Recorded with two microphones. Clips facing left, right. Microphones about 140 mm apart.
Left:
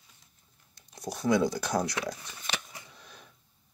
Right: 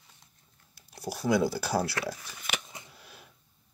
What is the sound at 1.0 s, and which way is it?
Speech, 5° right (ahead or behind).